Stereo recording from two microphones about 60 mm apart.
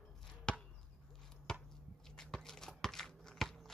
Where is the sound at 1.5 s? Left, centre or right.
Centre.